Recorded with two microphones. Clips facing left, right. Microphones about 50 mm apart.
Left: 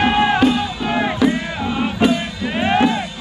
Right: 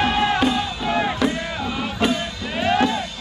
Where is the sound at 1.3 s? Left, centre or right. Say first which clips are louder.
Left 5 dB; left.